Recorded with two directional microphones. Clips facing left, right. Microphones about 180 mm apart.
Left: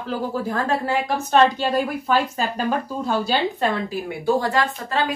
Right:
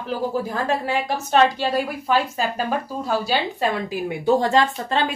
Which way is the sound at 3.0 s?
10° right (ahead or behind).